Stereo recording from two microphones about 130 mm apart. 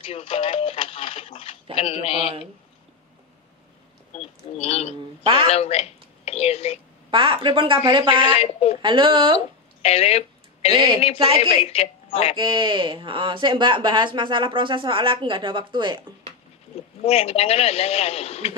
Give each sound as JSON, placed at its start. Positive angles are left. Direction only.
{"t": 0.0, "sound": "radio", "side_deg": 45}
{"t": 1.8, "sound": "a man's voice", "side_deg": 55}
{"t": 4.1, "sound": "a sound", "side_deg": 50}
{"t": 4.6, "sound": "a man's voice", "side_deg": 55}
{"t": 7.1, "sound": "speech", "side_deg": -40}
{"t": 8.2, "sound": "a man's voice", "side_deg": 55}
{"t": 8.8, "sound": "speech", "side_deg": -40}
{"t": 9.8, "sound": "a sound", "side_deg": 55}
{"t": 10.7, "sound": "speech", "side_deg": -40}
{"t": 11.6, "sound": "a woman's voice", "side_deg": 50}
{"t": 12.4, "sound": "speech", "side_deg": -40}
{"t": 17.0, "sound": "a man's voice", "side_deg": 50}